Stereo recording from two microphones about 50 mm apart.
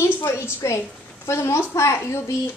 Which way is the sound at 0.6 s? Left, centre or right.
Left.